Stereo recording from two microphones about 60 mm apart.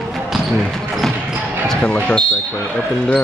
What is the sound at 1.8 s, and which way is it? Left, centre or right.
Speech, centre.